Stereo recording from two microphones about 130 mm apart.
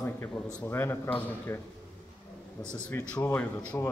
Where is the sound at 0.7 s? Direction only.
20° left (ahead or behind).